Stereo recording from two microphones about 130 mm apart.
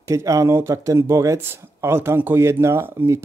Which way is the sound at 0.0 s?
25° right (ahead or behind).